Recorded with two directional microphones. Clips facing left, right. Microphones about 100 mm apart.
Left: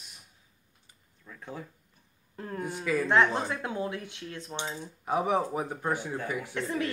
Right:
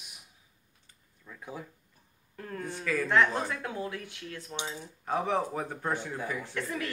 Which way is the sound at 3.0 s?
25° left (ahead or behind).